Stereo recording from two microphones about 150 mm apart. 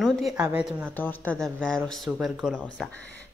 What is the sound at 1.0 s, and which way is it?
A woman's voice, 10° left (ahead or behind).